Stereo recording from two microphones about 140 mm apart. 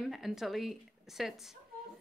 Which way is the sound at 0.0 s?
Centre (ahead or behind).